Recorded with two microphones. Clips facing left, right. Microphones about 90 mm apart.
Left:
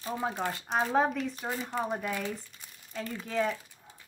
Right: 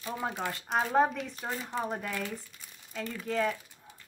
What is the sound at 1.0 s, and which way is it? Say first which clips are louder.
Speech: right 1 dB; centre (ahead or behind).